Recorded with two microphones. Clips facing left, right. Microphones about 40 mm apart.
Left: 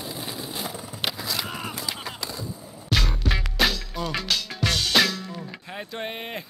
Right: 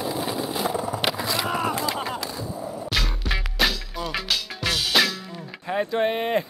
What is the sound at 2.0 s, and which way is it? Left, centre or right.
Skateboard, right.